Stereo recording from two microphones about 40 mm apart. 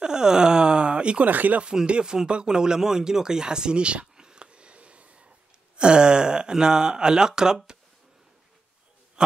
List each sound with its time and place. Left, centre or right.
0.0 s groan: centre
1.2 s speech: right
1.9 s speech: right